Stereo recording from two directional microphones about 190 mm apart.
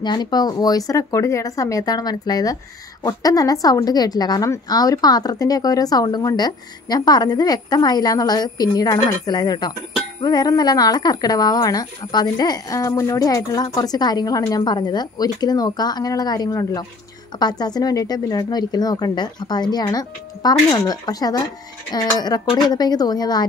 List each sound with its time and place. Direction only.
0.0 s speech: 20° left (ahead or behind)